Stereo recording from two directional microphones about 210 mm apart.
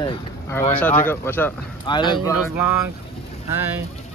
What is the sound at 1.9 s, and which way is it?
Speech, 20° left (ahead or behind).